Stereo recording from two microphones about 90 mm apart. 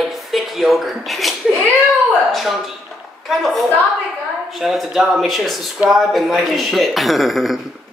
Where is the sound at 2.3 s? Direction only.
Centre (ahead or behind).